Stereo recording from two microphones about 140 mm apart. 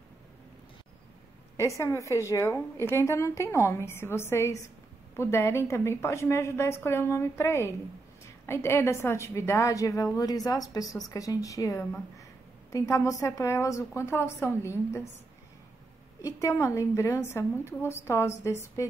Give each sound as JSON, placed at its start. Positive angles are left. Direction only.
{"t": 1.8, "sound": "a woman's voice", "side_deg": 20}
{"t": 16.2, "sound": "a woman's voice", "side_deg": 20}